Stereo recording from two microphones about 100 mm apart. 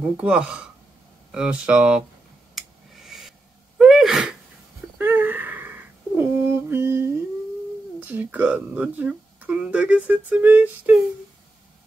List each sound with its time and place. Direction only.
0.2 s speech: 10° right (ahead or behind)
2.5 s sneeze: centre (ahead or behind)
4.9 s a sound: 20° right (ahead or behind)
8.0 s speech: 20° right (ahead or behind)